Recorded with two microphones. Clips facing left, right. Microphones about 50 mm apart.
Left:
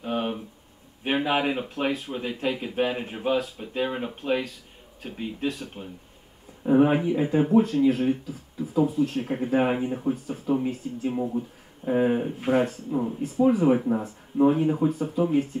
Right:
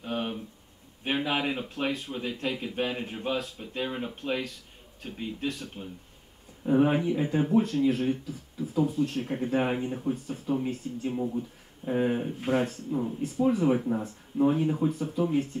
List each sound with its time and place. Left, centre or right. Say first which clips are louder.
0.0 s a sound: left 4 dB; centre
1.1 s speech: left 4 dB; centre
12.9 s speech: left 2 dB; centre
13.2 s speech: left 5 dB; centre